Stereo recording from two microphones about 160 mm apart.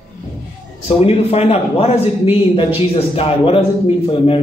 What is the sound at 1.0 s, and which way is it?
A man's voice, 40° left (ahead or behind).